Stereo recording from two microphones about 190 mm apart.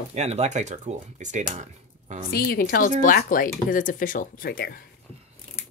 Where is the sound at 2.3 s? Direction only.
50° left (ahead or behind).